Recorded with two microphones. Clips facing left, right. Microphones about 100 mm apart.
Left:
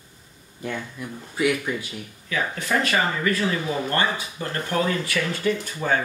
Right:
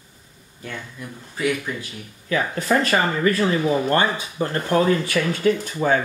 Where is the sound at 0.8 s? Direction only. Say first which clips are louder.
Left 2 dB; 15° left (ahead or behind).